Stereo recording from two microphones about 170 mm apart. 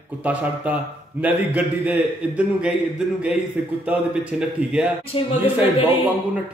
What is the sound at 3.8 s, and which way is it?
A man's voice, 5° right (ahead or behind).